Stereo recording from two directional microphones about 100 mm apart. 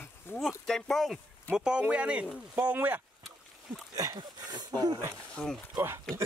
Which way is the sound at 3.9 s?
40° right (ahead or behind).